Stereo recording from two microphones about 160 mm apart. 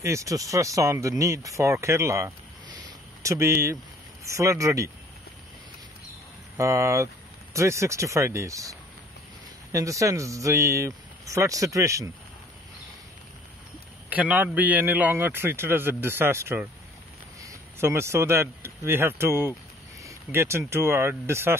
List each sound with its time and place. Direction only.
0.0 s speech: 20° right (ahead or behind)
6.5 s speech: 20° right (ahead or behind)
14.0 s a man's voice: 10° right (ahead or behind)